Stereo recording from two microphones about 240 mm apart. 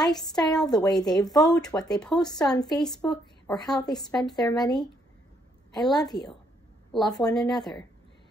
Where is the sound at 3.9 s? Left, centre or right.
Centre.